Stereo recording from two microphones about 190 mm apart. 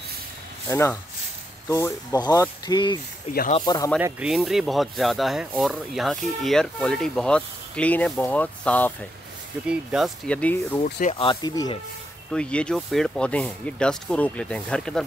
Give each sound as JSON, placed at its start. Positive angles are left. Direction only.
{"t": 0.7, "sound": "speech", "side_deg": 15}
{"t": 4.0, "sound": "speech", "side_deg": -5}
{"t": 9.7, "sound": "speech", "side_deg": -5}
{"t": 10.8, "sound": "speech", "side_deg": 40}
{"t": 12.3, "sound": "speech", "side_deg": 5}